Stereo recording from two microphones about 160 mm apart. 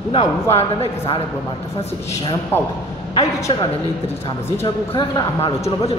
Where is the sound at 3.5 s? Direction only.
35° left (ahead or behind).